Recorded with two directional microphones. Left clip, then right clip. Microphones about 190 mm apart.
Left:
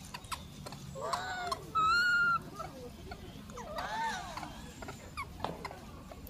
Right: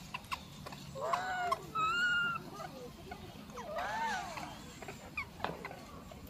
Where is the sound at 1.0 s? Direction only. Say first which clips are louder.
Right 2 dB; 10° right (ahead or behind).